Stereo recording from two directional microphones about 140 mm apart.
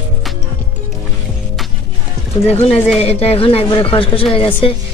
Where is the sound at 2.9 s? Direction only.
45° left (ahead or behind).